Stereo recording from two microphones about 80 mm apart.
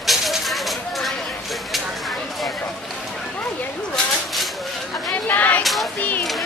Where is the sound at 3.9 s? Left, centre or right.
Centre.